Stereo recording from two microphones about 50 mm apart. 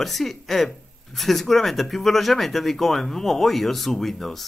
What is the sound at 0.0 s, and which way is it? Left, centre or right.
Speech, centre.